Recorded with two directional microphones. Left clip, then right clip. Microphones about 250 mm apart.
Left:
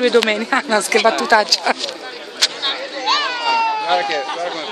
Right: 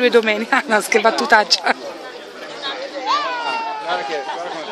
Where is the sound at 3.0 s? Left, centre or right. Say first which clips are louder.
Left 2 dB; centre.